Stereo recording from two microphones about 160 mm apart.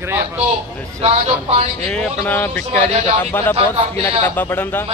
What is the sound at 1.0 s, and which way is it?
Speech, 40° right (ahead or behind).